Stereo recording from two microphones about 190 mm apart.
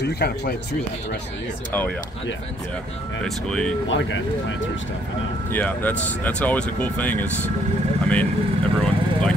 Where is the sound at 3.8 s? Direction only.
75° left (ahead or behind).